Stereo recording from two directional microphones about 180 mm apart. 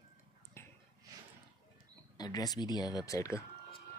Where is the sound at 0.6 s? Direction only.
15° left (ahead or behind).